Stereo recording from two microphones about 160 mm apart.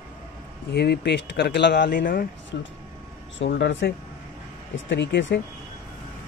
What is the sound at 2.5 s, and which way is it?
Speech, 90° left.